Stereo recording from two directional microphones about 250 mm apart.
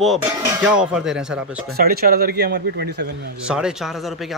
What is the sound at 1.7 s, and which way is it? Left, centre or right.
A man's voice, right.